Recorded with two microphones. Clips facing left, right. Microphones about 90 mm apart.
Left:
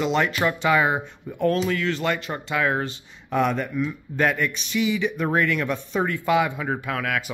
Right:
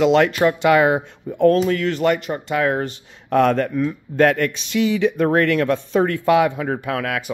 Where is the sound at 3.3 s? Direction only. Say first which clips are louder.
Right 7 dB; 70° right (ahead or behind).